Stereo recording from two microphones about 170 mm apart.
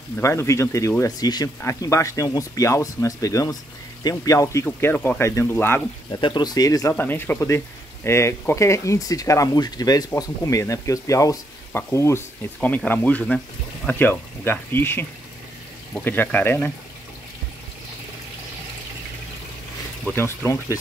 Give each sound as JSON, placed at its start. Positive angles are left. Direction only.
{"t": 0.2, "sound": "speech", "side_deg": 15}
{"t": 6.2, "sound": "speech", "side_deg": 25}
{"t": 20.1, "sound": "speech", "side_deg": 15}